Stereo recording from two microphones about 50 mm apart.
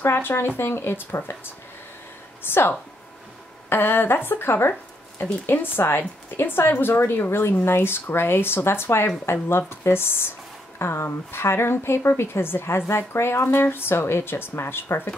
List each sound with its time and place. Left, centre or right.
0.0 s a woman's voice: left
2.4 s a woman's voice: left